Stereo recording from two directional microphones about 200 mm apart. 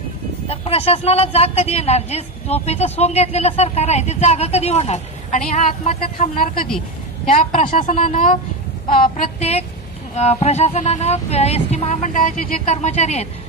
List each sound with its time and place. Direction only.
0.5 s a woman's voice: 30° left (ahead or behind)
6.2 s speech: 45° left (ahead or behind)
7.5 s a woman's voice: 25° left (ahead or behind)
8.9 s a woman's voice: 45° left (ahead or behind)